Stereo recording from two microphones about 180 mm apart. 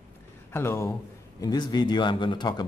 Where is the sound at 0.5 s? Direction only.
15° left (ahead or behind).